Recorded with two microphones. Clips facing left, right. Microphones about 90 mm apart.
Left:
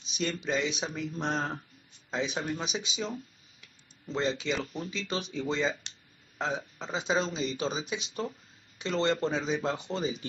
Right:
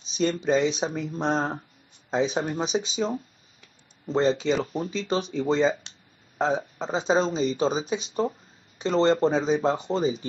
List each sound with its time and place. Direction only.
0.0 s speech: 35° right (ahead or behind)
3.6 s a sound: 35° right (ahead or behind)
4.7 s speech: 35° right (ahead or behind)